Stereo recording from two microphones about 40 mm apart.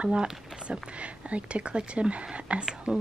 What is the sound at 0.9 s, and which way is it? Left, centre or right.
Speech, right.